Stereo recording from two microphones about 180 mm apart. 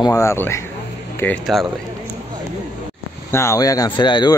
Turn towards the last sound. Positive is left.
turn(degrees=25)  # may be behind; listen again after turning